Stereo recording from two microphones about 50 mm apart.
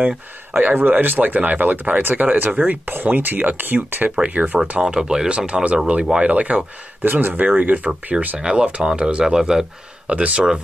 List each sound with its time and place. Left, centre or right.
0.6 s speech: right
2.9 s speech: right
4.1 s speech: right
4.8 s speech: centre
5.5 s speech: right
7.0 s speech: right
8.4 s speech: centre
10.0 s speech: right